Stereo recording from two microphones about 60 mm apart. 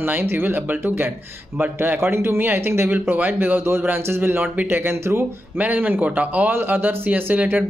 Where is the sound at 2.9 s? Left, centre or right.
Right.